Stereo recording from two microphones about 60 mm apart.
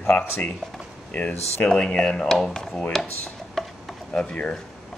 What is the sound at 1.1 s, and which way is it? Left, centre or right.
Speech, left.